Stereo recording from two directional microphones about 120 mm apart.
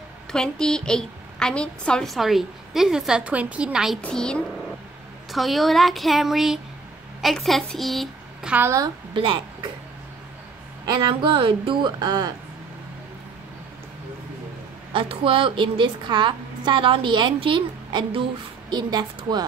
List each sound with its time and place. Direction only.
0.3 s a woman's voice: 5° left (ahead or behind)
4.0 s a woman's voice: 5° left (ahead or behind)
8.5 s a woman's voice: 15° right (ahead or behind)
9.1 s speech: 45° right (ahead or behind)
10.9 s speech: 40° right (ahead or behind)
14.9 s a woman's voice: 45° right (ahead or behind)